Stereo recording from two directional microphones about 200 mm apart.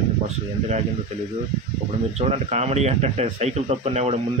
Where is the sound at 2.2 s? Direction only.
35° right (ahead or behind).